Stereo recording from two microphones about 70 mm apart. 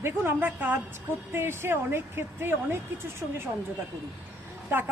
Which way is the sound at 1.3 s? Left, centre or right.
Right.